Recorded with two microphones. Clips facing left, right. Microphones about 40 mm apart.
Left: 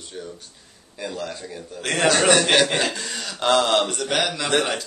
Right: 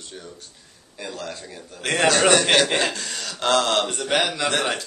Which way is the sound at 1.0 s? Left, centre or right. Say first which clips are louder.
Left 3 dB; centre.